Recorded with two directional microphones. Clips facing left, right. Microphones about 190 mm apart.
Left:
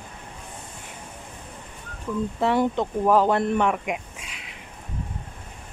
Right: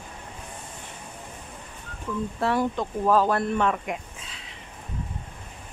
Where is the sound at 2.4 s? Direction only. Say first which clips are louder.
Left 3 dB; 20° left (ahead or behind).